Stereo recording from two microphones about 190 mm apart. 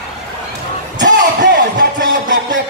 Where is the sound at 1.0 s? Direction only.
65° right (ahead or behind).